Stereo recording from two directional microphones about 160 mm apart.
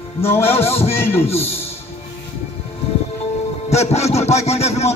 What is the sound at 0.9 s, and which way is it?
Speech, 15° left (ahead or behind).